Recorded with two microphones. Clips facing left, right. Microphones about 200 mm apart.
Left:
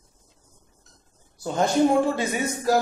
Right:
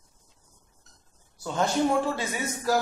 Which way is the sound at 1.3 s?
15° left (ahead or behind).